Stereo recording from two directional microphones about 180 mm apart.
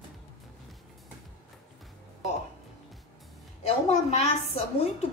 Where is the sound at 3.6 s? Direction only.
35° left (ahead or behind).